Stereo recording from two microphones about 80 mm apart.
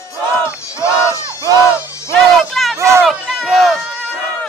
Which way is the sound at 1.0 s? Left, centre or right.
Left.